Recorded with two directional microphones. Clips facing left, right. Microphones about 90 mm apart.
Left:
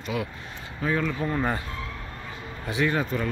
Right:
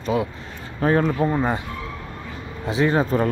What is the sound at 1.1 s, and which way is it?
Speech, 20° right (ahead or behind).